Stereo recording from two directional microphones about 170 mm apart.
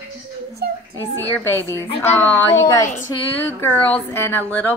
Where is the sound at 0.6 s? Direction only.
70° right (ahead or behind).